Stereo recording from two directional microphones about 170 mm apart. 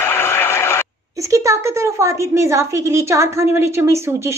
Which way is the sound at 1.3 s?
20° right (ahead or behind).